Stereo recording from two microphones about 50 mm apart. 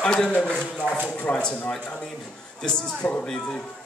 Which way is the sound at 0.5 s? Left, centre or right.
Left.